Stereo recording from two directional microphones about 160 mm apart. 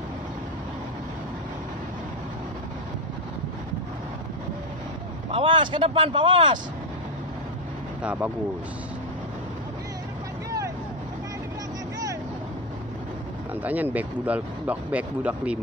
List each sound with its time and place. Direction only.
5.3 s speech: 30° right (ahead or behind)
8.0 s speech: 10° right (ahead or behind)
13.6 s speech: 10° right (ahead or behind)